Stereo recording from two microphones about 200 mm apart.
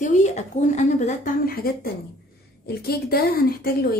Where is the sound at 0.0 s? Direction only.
40° left (ahead or behind).